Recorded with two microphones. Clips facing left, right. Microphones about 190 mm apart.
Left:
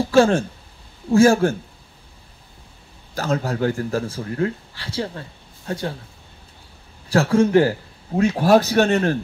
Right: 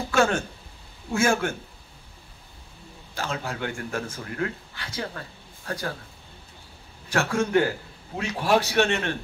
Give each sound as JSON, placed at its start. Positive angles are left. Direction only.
{"t": 0.1, "sound": "speech", "side_deg": 30}
{"t": 3.2, "sound": "a man's voice", "side_deg": 40}
{"t": 7.1, "sound": "speech", "side_deg": 35}